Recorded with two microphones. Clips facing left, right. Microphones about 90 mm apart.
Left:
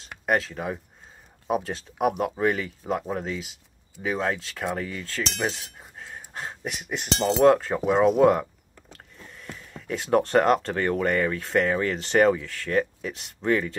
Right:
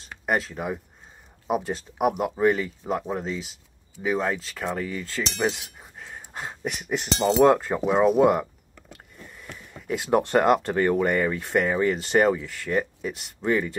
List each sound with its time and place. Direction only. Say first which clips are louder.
0.0 s speech: left 1 dB; centre (ahead or behind)
7.2 s speech: even; 15° right (ahead or behind)
7.7 s speech: even; 5° right (ahead or behind)